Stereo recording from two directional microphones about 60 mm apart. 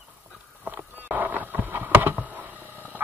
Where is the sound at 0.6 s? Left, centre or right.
Right.